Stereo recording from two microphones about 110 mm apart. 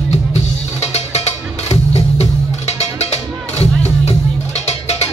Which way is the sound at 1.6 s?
75° left (ahead or behind).